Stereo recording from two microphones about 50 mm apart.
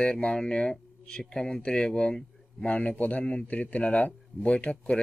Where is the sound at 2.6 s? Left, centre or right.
Left.